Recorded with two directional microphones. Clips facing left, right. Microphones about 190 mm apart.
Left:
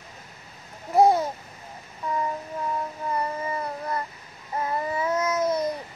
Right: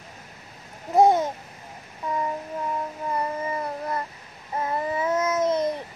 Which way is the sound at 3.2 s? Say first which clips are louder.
Right 1 dB; 25° right (ahead or behind).